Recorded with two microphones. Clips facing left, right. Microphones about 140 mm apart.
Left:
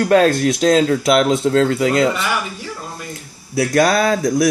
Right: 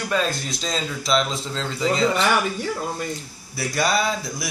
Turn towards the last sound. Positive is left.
turn(degrees=85)